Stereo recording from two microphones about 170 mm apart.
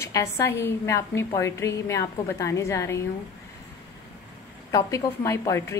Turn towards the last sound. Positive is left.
turn(degrees=15)  # may be behind; listen again after turning